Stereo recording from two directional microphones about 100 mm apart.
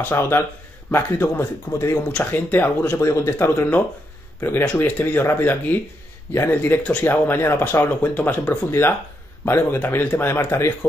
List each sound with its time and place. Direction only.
0.0 s speech: 25° left (ahead or behind)